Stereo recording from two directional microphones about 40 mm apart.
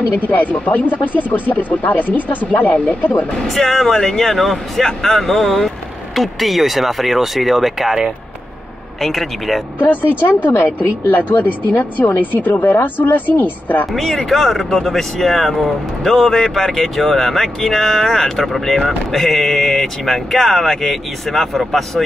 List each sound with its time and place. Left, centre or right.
0.3 s speech: left
3.4 s speech: centre
9.0 s speech: centre
9.8 s speech: left
10.2 s speech: left
13.9 s speech: centre